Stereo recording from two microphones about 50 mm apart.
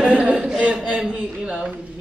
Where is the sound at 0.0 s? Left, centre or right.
Right.